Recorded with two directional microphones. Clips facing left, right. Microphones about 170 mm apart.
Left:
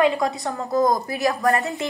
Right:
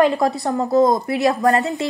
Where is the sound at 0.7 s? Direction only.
25° right (ahead or behind).